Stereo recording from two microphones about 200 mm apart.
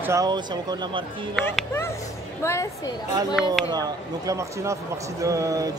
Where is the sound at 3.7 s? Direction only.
20° right (ahead or behind).